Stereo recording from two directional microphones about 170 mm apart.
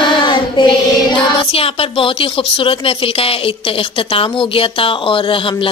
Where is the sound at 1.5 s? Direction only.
35° left (ahead or behind).